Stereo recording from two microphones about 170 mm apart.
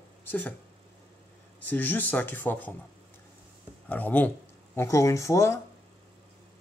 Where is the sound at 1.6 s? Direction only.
10° left (ahead or behind).